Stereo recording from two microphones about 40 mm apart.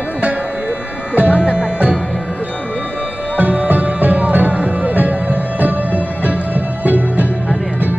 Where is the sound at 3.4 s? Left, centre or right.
Right.